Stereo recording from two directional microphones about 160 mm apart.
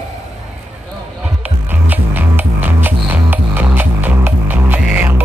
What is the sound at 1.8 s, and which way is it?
Music, 10° right (ahead or behind).